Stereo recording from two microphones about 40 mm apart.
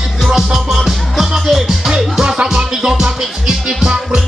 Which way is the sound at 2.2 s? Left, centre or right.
Centre.